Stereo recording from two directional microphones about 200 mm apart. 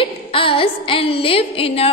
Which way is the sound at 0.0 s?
25° left (ahead or behind).